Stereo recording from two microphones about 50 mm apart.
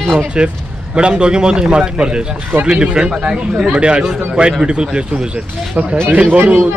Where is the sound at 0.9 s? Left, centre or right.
Centre.